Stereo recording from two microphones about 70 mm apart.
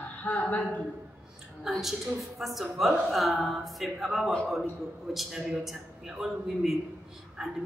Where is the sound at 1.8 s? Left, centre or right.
Centre.